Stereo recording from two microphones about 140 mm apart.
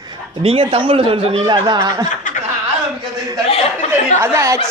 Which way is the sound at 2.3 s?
65° left (ahead or behind).